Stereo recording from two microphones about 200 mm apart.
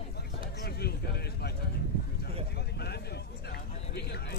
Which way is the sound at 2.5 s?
55° left (ahead or behind).